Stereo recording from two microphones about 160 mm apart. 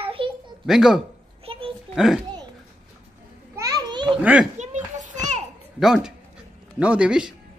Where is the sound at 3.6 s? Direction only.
25° right (ahead or behind).